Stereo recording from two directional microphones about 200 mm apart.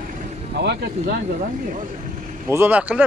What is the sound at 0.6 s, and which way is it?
Speech, 55° right (ahead or behind).